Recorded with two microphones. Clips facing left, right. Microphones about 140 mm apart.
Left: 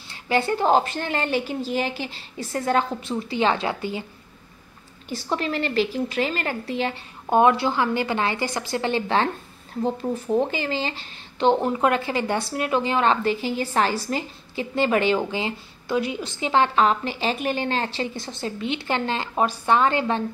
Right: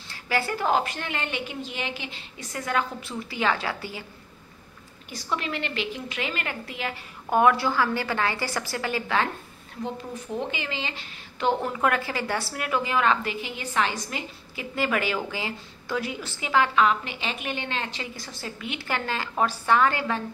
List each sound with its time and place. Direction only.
0.1 s a woman's voice: 25° left (ahead or behind)
5.1 s a woman's voice: 30° left (ahead or behind)